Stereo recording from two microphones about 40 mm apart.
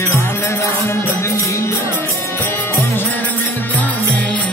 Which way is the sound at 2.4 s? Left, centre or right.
Left.